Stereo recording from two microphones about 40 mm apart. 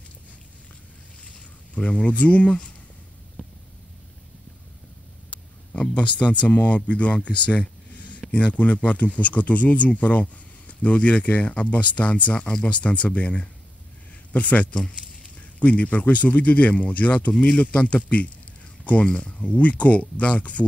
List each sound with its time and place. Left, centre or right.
1.8 s speech: left
5.7 s speech: left